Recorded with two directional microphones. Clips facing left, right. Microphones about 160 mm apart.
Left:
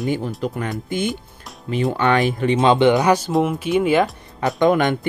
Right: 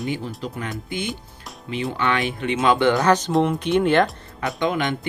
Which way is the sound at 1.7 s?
45° left (ahead or behind).